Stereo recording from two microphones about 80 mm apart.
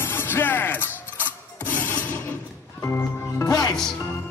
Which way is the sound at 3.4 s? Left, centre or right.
Left.